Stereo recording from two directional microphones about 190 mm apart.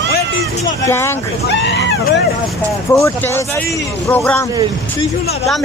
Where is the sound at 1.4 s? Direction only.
65° left (ahead or behind).